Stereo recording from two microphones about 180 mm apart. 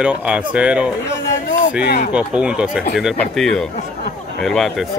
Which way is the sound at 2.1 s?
5° right (ahead or behind).